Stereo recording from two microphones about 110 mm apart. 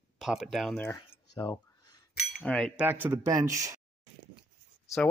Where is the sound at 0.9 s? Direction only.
40° left (ahead or behind).